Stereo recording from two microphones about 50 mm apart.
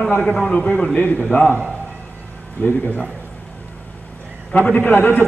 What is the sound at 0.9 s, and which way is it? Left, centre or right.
Speech, left.